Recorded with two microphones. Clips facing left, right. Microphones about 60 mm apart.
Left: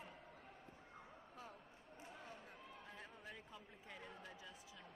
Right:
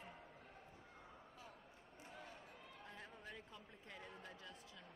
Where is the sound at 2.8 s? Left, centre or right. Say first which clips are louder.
Right 2 dB; centre.